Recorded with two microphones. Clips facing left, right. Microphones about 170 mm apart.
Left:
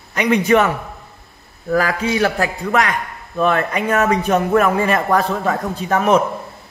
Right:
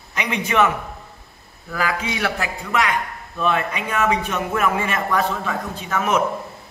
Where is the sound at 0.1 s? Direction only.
45° left (ahead or behind).